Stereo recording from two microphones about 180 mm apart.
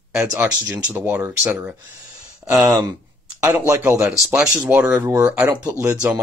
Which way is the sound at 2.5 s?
20° right (ahead or behind).